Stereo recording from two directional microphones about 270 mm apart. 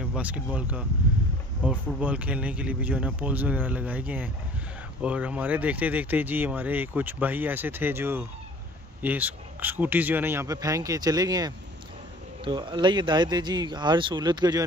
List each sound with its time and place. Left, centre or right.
0.0 s speech: centre